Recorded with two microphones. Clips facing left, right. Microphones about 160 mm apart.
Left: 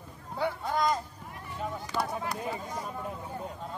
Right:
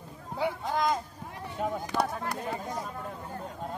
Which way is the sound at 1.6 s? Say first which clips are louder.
Right 4 dB; 55° right (ahead or behind).